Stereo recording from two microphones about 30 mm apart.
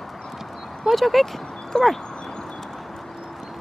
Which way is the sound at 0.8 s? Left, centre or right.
Centre.